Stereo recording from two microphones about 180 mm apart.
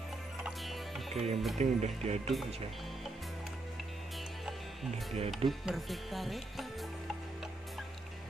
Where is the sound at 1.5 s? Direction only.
40° right (ahead or behind).